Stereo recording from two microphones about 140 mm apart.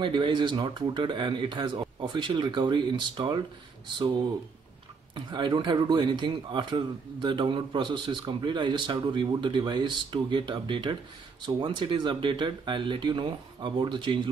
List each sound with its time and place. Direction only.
0.0 s speech: 35° right (ahead or behind)
5.1 s speech: 35° right (ahead or behind)